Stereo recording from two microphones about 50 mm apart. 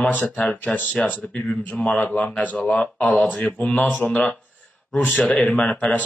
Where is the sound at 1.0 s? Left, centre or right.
Left.